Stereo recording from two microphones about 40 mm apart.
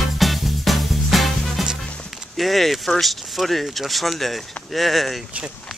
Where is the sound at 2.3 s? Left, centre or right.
Centre.